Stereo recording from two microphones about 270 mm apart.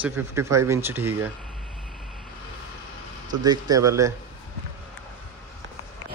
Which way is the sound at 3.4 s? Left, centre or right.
Centre.